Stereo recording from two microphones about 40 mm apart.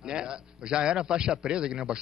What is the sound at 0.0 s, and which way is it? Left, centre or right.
A man's voice, centre.